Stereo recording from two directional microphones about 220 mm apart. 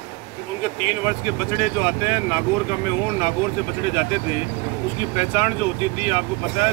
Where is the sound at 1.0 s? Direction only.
10° right (ahead or behind).